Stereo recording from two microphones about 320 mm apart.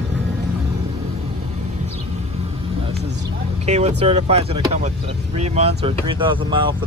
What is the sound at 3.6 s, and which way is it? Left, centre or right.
Speech, right.